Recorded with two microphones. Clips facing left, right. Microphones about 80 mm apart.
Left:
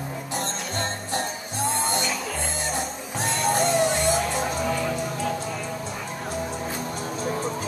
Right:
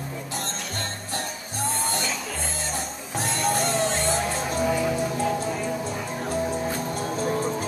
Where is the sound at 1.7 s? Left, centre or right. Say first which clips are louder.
Left 2 dB; left.